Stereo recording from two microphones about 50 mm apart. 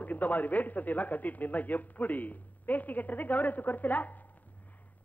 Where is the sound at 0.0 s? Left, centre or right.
Left.